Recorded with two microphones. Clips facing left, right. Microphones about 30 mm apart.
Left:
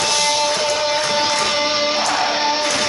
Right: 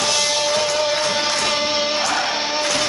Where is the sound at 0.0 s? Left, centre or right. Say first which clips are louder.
Left 2 dB; centre.